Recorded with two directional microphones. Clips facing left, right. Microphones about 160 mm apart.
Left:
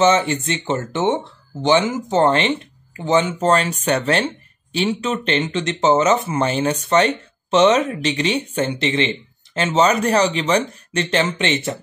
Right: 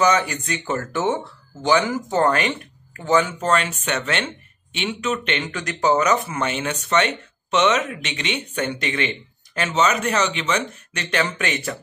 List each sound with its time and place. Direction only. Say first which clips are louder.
0.0 s speech: left 3 dB; 25° left (ahead or behind)